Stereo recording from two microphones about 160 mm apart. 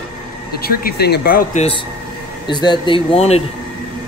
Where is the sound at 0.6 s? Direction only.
75° left (ahead or behind).